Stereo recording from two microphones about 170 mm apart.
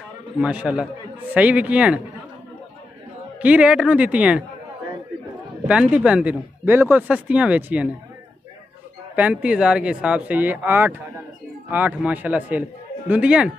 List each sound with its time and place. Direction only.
0.4 s a man's voice: 5° right (ahead or behind)
3.3 s speech: 5° right (ahead or behind)
5.7 s speech: 5° right (ahead or behind)
9.1 s speech: 10° right (ahead or behind)